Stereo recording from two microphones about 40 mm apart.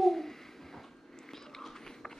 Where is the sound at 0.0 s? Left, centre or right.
Centre.